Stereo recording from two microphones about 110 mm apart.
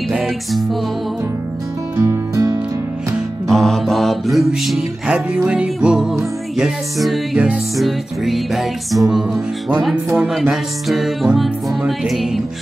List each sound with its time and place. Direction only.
0.1 s music: centre (ahead or behind)
2.0 s music: 30° right (ahead or behind)
3.4 s music: 5° left (ahead or behind)